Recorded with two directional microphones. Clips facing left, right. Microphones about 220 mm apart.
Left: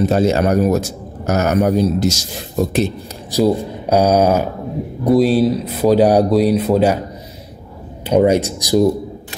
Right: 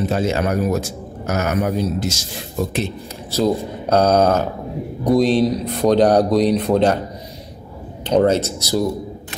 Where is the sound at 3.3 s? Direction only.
10° left (ahead or behind).